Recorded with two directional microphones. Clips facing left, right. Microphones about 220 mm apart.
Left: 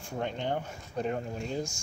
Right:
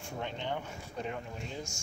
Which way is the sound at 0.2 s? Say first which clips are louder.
Left 5 dB; 45° left (ahead or behind).